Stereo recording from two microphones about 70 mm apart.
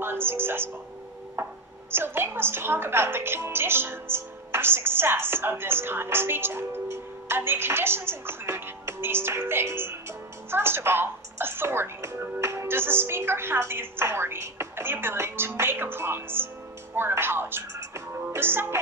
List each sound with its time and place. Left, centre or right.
0.0 s a woman's voice: right